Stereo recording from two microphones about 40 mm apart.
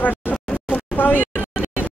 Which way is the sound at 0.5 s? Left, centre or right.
Left.